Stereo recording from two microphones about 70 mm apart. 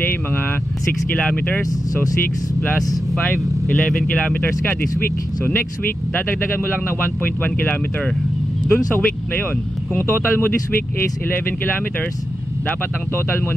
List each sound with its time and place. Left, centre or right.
1.1 s speech: centre
3.3 s speech: centre
7.2 s speech: left
12.6 s speech: left